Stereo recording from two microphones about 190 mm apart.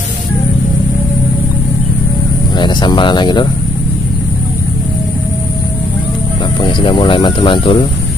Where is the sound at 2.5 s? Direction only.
25° left (ahead or behind).